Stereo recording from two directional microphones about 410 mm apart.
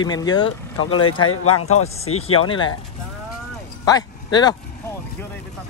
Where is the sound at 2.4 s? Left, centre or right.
Centre.